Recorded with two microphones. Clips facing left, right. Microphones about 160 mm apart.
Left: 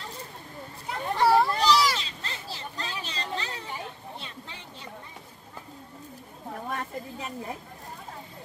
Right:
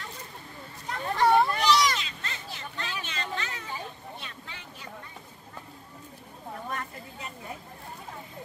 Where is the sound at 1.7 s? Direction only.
Centre (ahead or behind).